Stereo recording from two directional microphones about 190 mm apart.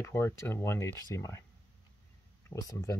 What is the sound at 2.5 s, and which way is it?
Speech, 15° left (ahead or behind).